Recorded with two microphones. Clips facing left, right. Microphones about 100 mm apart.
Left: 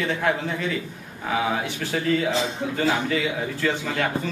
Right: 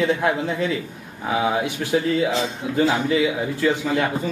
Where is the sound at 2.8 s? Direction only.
15° right (ahead or behind).